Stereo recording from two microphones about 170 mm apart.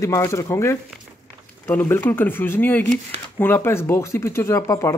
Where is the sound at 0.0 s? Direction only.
15° left (ahead or behind).